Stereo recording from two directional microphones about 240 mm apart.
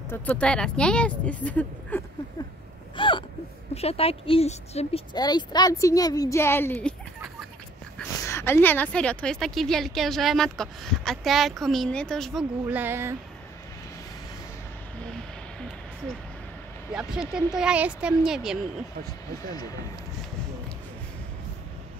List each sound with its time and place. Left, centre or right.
0.1 s a woman's voice: centre
3.0 s a sound: left
3.7 s a woman's voice: left; by 7.0 s centre
8.0 s a woman's voice: centre
16.9 s a woman's voice: centre